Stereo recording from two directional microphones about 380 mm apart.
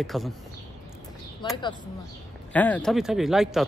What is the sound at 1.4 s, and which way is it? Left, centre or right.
Speech, centre.